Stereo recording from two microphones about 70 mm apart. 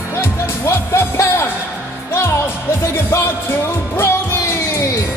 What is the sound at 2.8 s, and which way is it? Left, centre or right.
Music, left.